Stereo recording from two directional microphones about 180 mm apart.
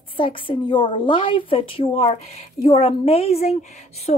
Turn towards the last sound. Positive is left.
turn(degrees=40)  # may be behind; listen again after turning